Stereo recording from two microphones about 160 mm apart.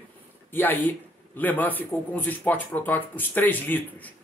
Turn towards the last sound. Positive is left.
turn(degrees=10)  # may be behind; listen again after turning